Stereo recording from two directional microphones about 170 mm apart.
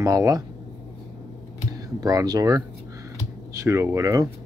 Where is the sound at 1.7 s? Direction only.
20° right (ahead or behind).